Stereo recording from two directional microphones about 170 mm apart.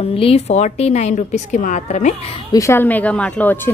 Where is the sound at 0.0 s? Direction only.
35° left (ahead or behind).